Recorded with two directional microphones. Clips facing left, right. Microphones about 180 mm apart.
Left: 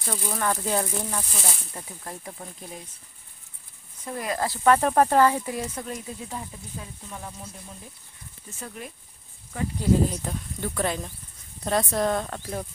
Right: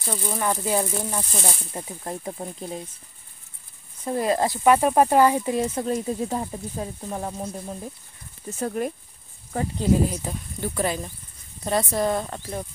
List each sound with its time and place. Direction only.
0.0 s speech: 5° right (ahead or behind)
1.7 s speech: 25° right (ahead or behind)
4.0 s speech: 30° right (ahead or behind)
4.5 s speech: 10° right (ahead or behind); by 5.9 s 30° right (ahead or behind)
5.9 s speech: 40° right (ahead or behind)
10.1 s speech: 5° right (ahead or behind)